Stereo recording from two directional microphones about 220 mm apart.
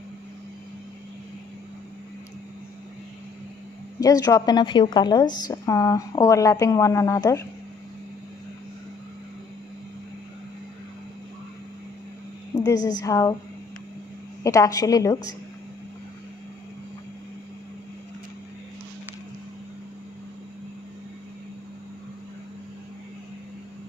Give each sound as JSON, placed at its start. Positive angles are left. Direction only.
{"t": 4.0, "sound": "a woman's voice", "side_deg": 15}
{"t": 12.5, "sound": "a woman's voice", "side_deg": 15}
{"t": 14.4, "sound": "a woman's voice", "side_deg": 15}